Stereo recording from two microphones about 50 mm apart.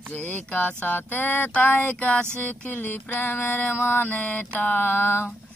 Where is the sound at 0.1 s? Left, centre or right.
Left.